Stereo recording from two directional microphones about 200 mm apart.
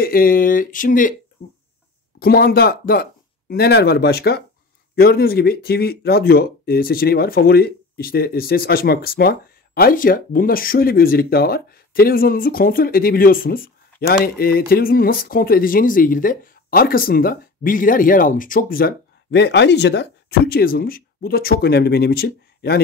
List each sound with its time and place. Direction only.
0.0 s speech: 45° left (ahead or behind)
2.1 s speech: 50° left (ahead or behind)